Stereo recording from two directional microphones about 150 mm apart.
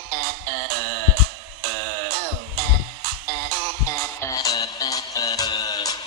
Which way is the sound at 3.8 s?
20° left (ahead or behind).